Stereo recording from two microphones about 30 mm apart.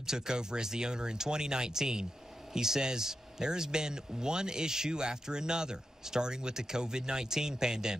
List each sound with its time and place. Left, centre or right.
0.0 s speech: right